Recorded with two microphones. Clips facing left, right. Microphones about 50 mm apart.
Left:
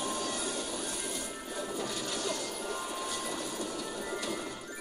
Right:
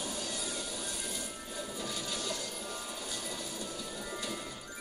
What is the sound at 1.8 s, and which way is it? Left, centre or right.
Vehicle, left.